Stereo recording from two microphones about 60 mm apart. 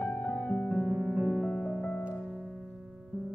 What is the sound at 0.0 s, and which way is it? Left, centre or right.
Music, left.